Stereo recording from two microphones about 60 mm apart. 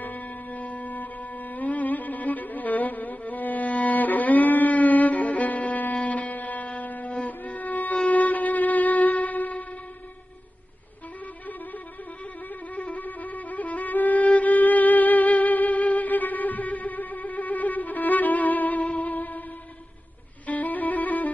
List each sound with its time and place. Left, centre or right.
0.0 s music: left
12.7 s music: left
20.4 s music: left